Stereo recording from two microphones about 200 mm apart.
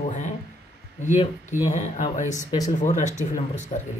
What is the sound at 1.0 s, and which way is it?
A man's voice, 35° left (ahead or behind).